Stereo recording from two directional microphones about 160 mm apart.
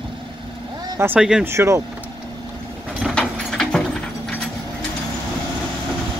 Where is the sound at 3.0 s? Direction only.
5° left (ahead or behind).